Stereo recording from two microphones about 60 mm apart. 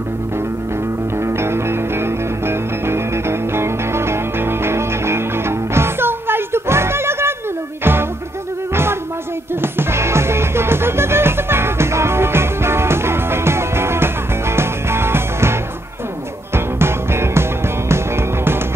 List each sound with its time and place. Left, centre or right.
1.1 s music: right
9.6 s music: right